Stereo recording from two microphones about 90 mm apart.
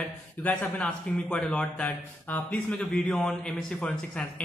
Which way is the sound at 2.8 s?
5° left (ahead or behind).